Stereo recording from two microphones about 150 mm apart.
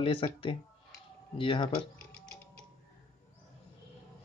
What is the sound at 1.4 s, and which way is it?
Speech, 35° left (ahead or behind).